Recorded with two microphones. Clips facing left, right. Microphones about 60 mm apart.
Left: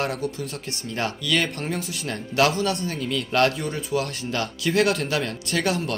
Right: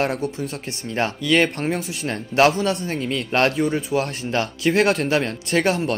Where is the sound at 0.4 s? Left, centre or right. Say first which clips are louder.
Right 3 dB; right.